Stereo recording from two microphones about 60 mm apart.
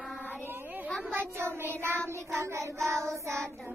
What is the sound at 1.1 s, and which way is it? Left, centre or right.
Child singing, right.